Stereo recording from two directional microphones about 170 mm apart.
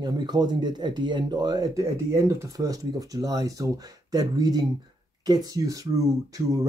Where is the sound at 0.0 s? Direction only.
25° right (ahead or behind).